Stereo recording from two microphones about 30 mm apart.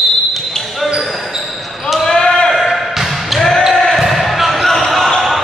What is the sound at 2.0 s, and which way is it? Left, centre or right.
Basketball bounce, centre.